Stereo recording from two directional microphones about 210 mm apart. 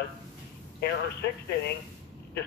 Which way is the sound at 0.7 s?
50° left (ahead or behind).